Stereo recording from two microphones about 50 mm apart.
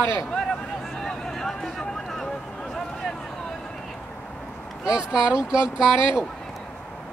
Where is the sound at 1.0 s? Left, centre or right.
Centre.